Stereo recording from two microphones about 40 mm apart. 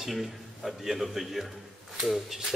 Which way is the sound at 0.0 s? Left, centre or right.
Centre.